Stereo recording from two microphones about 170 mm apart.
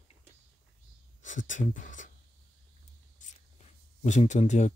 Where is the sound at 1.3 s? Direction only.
50° left (ahead or behind).